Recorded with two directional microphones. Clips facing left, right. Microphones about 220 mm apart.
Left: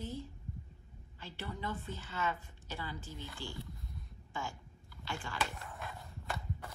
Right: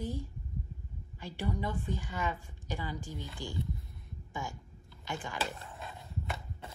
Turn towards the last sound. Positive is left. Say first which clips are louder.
# right 1 dB
turn(degrees=-25)  # may be behind; listen again after turning